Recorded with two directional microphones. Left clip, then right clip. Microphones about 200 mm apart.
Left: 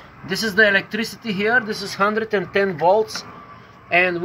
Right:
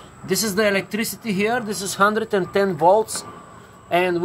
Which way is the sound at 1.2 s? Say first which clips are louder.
Left 4 dB; centre (ahead or behind).